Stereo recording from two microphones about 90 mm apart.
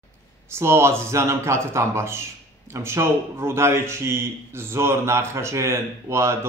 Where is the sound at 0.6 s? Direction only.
30° right (ahead or behind).